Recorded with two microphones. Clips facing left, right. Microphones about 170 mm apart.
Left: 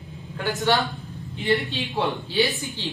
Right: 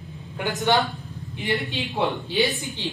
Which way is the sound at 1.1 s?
20° right (ahead or behind).